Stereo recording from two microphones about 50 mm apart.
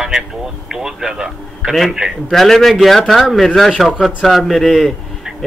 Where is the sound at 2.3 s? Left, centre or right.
Centre.